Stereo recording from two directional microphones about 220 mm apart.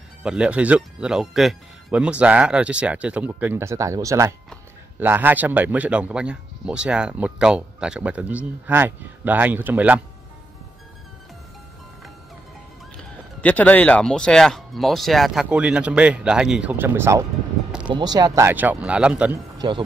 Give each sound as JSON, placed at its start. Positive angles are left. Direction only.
{"t": 0.2, "sound": "speech", "side_deg": -5}
{"t": 12.9, "sound": "speech", "side_deg": 5}
{"t": 19.6, "sound": "speech", "side_deg": -20}